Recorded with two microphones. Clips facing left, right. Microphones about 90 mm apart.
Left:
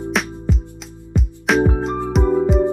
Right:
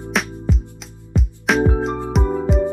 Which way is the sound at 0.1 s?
Centre (ahead or behind).